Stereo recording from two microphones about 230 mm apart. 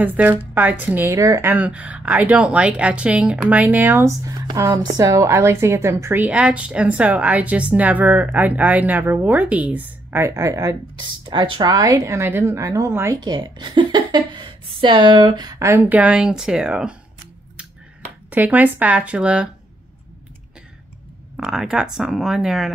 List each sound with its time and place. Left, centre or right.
0.0 s a woman's voice: centre
18.3 s a woman's voice: centre
21.4 s speech: centre